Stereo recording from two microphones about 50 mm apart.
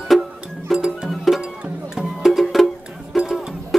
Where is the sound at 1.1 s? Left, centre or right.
Centre.